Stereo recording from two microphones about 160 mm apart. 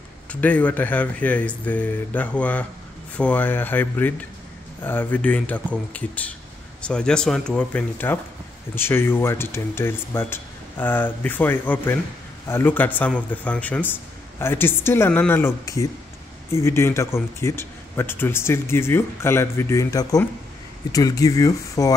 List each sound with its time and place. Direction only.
0.3 s speech: 10° left (ahead or behind)